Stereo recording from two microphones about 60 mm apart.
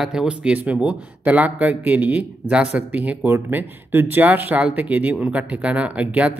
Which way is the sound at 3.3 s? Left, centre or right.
Right.